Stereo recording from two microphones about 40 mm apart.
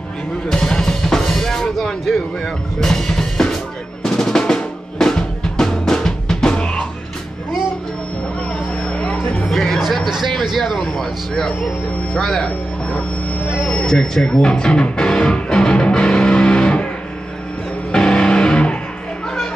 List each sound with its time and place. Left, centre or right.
0.5 s drum kit: centre
2.4 s speech: centre
4.0 s drum: centre
8.7 s a sound: left
9.6 s music: centre
10.4 s speech: centre
11.0 s speech: centre
12.4 s a sound: left
13.6 s music: left
17.9 s music: left